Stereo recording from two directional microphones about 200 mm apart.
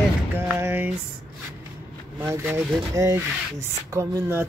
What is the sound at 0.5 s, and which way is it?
Speech, 10° right (ahead or behind).